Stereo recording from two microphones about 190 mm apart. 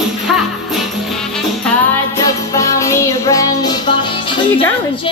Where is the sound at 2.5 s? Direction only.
15° left (ahead or behind).